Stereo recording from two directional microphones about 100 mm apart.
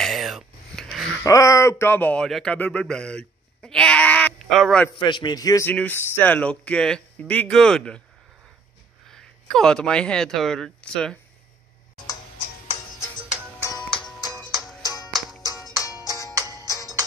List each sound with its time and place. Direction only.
0.0 s a sound: centre (ahead or behind)
1.2 s speech: 30° left (ahead or behind); by 4.3 s 15° left (ahead or behind)
4.5 s a man's voice: centre (ahead or behind)
4.9 s a man's voice: 50° left (ahead or behind)
5.7 s speech: 15° left (ahead or behind)
9.1 s speech: 5° left (ahead or behind)
14.5 s music: centre (ahead or behind)
14.8 s music: 40° left (ahead or behind)
15.1 s music: centre (ahead or behind)
15.8 s music: 35° left (ahead or behind)
16.3 s music: 40° right (ahead or behind)